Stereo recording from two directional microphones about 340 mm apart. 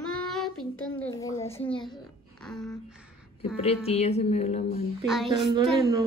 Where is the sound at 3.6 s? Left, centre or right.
Centre.